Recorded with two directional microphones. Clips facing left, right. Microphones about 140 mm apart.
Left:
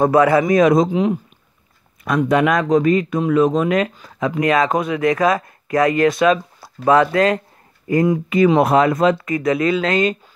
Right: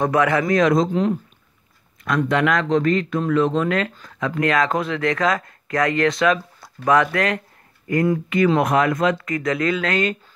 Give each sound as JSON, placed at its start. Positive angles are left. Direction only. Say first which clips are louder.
{"t": 0.0, "sound": "speech", "louder": "left 5 dB", "side_deg": 25}